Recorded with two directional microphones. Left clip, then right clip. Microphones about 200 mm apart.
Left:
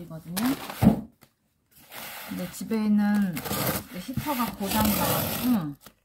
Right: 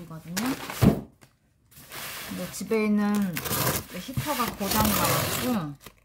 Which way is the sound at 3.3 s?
15° right (ahead or behind).